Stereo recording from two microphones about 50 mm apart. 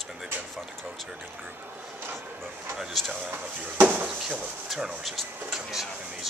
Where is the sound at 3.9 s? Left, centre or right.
Right.